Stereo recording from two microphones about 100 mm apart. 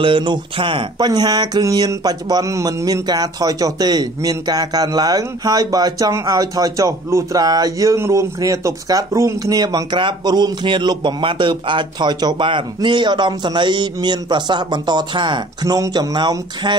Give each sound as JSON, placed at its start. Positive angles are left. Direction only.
{"t": 0.0, "sound": "speech", "side_deg": -55}
{"t": 0.9, "sound": "a sound", "side_deg": -45}
{"t": 7.4, "sound": "speech", "side_deg": -40}